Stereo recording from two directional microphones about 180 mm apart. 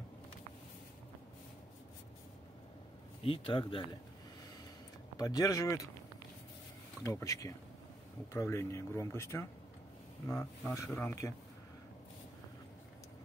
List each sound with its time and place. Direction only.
3.3 s speech: 30° left (ahead or behind)
5.1 s speech: 20° left (ahead or behind)
7.0 s speech: 15° left (ahead or behind)